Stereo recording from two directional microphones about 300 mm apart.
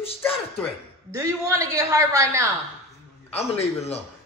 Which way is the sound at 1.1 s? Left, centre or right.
Centre.